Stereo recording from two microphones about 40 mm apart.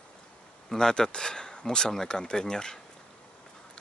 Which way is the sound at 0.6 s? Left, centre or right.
Centre.